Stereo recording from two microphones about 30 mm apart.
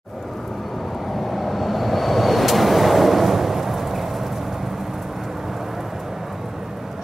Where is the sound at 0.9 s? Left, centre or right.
Centre.